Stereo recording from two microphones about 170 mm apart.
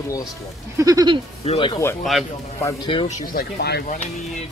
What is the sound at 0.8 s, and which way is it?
Speech, 20° right (ahead or behind).